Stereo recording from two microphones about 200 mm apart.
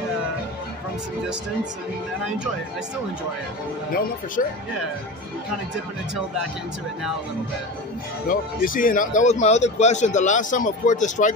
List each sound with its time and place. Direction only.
2.2 s speech: 5° right (ahead or behind)
4.4 s speech: 40° left (ahead or behind)
8.3 s speech: 45° left (ahead or behind)